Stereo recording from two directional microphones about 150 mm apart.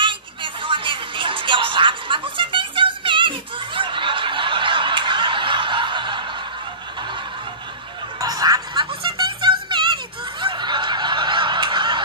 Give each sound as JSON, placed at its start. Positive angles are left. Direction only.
{"t": 0.0, "sound": "music", "side_deg": -35}
{"t": 8.2, "sound": "music", "side_deg": -25}
{"t": 10.4, "sound": "snicker", "side_deg": -30}